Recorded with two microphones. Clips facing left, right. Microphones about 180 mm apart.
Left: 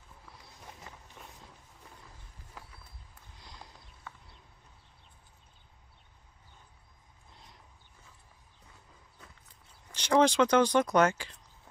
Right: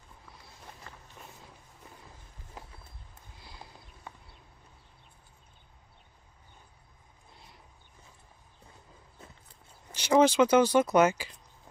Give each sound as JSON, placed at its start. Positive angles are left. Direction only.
{"t": 0.9, "sound": "walk", "side_deg": 15}
{"t": 2.6, "sound": "run", "side_deg": -20}
{"t": 3.3, "sound": "a sound", "side_deg": -5}
{"t": 4.1, "sound": "horse", "side_deg": -15}
{"t": 9.2, "sound": "horse", "side_deg": -25}
{"t": 9.9, "sound": "speech", "side_deg": -5}